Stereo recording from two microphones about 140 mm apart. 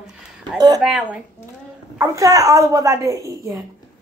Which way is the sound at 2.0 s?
25° right (ahead or behind).